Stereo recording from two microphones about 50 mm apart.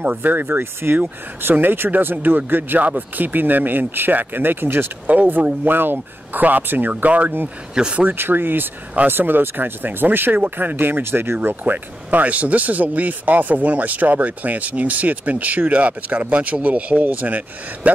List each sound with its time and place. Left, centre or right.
0.0 s speech: right
8.2 s speech: right
11.4 s speech: right